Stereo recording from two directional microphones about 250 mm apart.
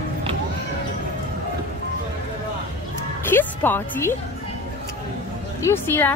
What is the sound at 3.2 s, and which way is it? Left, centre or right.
Music, centre.